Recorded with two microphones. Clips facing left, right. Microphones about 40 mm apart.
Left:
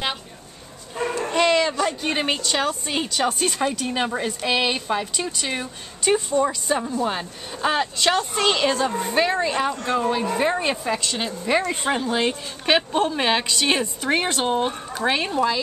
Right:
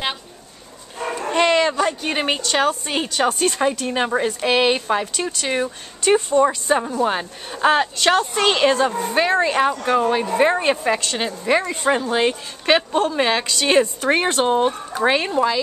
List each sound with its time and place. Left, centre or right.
1.1 s a sound: centre
2.0 s speech: centre
6.1 s speech: right
11.1 s speech: centre
12.6 s a woman's voice: centre
14.1 s speech: centre